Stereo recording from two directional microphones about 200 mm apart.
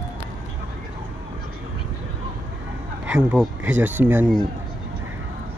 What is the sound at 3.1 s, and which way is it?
Speech, 5° right (ahead or behind).